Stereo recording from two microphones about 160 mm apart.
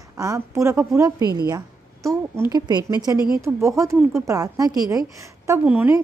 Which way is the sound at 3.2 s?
25° left (ahead or behind).